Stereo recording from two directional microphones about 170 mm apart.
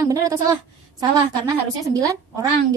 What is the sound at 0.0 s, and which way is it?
A woman's voice, 20° right (ahead or behind).